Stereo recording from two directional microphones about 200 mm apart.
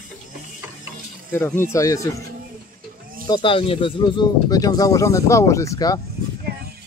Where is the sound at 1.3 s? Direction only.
10° left (ahead or behind).